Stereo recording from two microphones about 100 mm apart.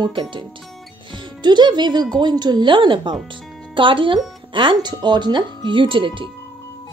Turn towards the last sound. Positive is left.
turn(degrees=-55)  # may be behind; listen again after turning